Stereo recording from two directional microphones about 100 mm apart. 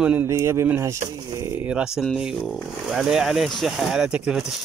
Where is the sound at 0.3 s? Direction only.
25° right (ahead or behind).